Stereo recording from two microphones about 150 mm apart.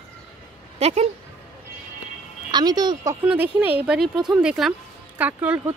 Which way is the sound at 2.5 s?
30° right (ahead or behind).